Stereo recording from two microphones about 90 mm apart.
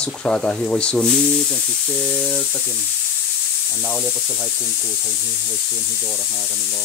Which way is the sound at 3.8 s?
20° left (ahead or behind).